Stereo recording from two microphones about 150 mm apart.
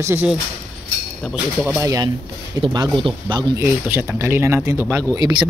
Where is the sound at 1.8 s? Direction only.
25° right (ahead or behind).